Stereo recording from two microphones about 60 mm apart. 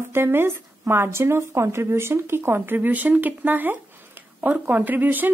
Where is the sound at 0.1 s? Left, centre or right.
Right.